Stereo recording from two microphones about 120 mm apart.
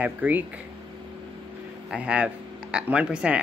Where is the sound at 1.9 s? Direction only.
10° right (ahead or behind).